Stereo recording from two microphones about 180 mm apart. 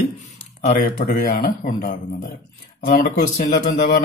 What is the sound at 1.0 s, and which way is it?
Speech, 45° left (ahead or behind).